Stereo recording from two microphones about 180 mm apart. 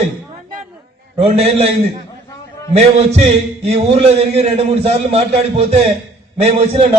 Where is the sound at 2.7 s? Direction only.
35° right (ahead or behind).